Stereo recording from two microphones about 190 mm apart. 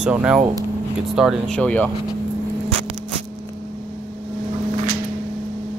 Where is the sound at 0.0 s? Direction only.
5° right (ahead or behind).